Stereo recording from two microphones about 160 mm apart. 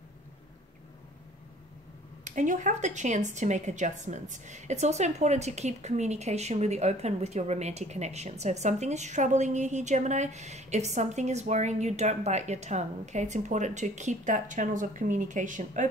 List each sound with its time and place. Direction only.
2.2 s a woman's voice: 50° right (ahead or behind)